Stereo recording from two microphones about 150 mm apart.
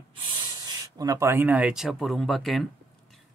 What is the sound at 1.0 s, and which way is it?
Speech, 20° right (ahead or behind).